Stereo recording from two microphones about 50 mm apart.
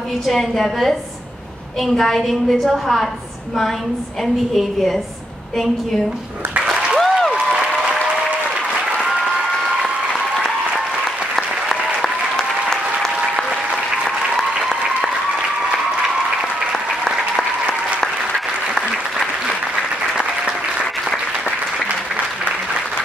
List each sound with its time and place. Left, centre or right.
0.3 s a woman's voice: centre
4.2 s a woman's voice: centre
6.6 s applause: centre
7.0 s a sound: centre
11.3 s applause: centre
16.7 s applause: centre
21.8 s applause: right